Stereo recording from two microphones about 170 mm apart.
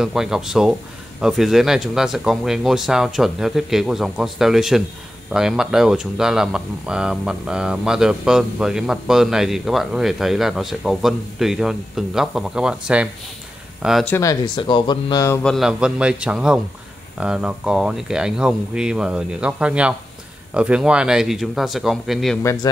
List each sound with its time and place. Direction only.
0.0 s speech: 5° right (ahead or behind)
14.1 s speech: 20° left (ahead or behind)
15.4 s speech: centre (ahead or behind)
22.4 s speech: 15° left (ahead or behind)